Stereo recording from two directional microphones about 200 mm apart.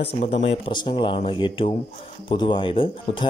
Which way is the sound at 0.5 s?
25° left (ahead or behind).